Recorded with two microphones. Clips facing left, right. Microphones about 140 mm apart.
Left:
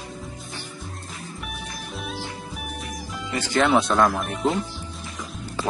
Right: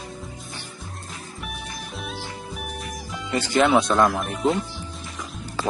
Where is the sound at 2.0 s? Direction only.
Centre (ahead or behind).